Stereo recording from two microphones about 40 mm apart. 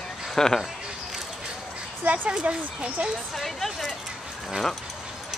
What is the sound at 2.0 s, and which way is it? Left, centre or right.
Speech, right.